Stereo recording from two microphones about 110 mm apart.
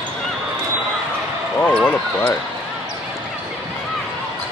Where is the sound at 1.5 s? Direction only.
15° left (ahead or behind).